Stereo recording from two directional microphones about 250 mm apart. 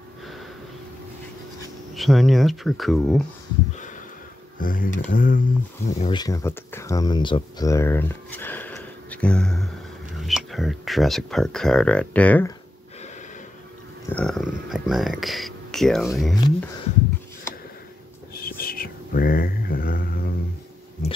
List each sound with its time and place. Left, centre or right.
2.0 s speech: centre
4.6 s speech: left
6.1 s speech: centre
14.0 s speech: centre
18.3 s whispering: left